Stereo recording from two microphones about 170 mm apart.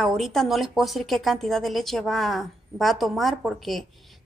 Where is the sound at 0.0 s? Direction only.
Centre (ahead or behind).